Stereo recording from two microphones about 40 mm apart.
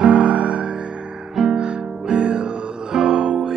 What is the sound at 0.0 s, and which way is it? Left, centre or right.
Music, right.